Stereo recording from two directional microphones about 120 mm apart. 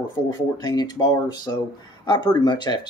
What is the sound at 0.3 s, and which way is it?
Speech, 35° left (ahead or behind).